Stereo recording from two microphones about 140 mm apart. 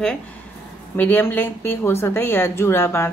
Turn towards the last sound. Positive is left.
turn(degrees=15)  # may be behind; listen again after turning